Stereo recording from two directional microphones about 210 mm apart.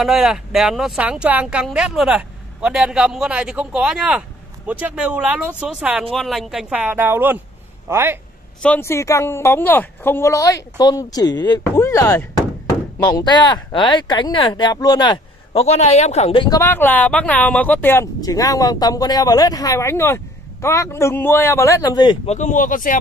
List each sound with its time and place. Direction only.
0.0 s speech: centre (ahead or behind)
8.6 s speech: 10° left (ahead or behind)
22.3 s speech: 35° left (ahead or behind)